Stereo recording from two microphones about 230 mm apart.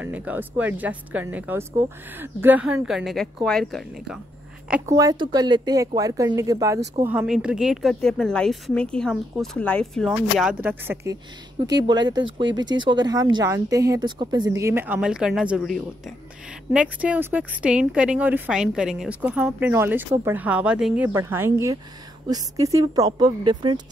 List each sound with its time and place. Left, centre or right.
0.0 s a woman's voice: centre
4.6 s a woman's voice: centre
11.9 s speech: centre